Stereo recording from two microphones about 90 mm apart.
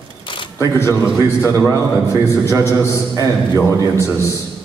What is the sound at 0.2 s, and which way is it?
Camera, 65° left (ahead or behind).